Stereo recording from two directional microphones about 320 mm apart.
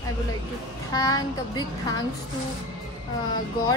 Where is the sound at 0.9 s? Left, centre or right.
Centre.